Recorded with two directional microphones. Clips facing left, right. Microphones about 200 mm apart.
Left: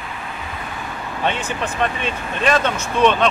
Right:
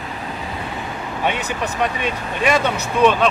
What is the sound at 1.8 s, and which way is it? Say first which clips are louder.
Speech: right 1 dB; 15° right (ahead or behind).